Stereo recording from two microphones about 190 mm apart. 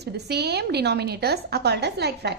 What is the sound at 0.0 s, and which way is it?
A woman's voice, 60° right (ahead or behind).